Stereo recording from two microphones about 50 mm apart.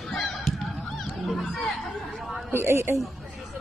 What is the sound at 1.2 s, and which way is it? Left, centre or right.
Chatter, centre.